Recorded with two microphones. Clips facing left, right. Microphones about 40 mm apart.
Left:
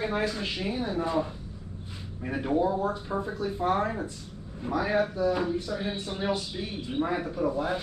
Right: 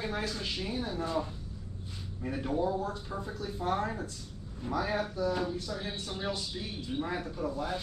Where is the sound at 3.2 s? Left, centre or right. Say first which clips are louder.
Left 5 dB; centre.